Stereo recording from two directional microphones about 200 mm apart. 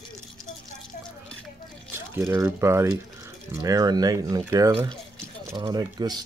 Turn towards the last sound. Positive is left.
turn(degrees=-20)  # may be behind; listen again after turning